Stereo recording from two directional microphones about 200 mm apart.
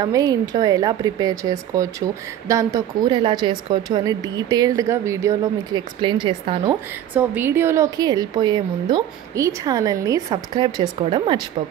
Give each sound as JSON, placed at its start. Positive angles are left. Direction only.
{"t": 0.0, "sound": "speech", "side_deg": -20}
{"t": 6.7, "sound": "a woman's voice", "side_deg": -10}